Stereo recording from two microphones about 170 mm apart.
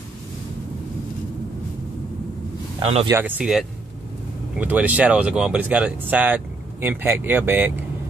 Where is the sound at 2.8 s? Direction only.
35° right (ahead or behind).